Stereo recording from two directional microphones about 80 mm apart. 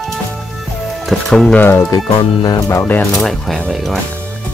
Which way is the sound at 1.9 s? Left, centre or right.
Left.